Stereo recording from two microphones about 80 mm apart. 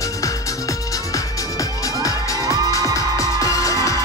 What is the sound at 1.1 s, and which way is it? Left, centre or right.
Music, left.